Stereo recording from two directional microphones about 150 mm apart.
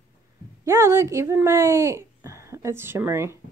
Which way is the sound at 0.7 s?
15° right (ahead or behind).